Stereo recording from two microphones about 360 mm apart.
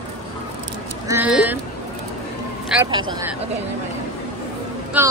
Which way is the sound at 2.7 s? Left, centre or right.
Centre.